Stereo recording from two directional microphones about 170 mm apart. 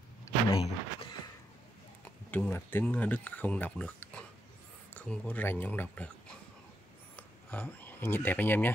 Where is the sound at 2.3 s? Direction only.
10° left (ahead or behind).